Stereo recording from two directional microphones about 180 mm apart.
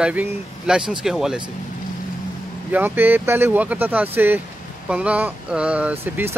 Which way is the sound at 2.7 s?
10° right (ahead or behind).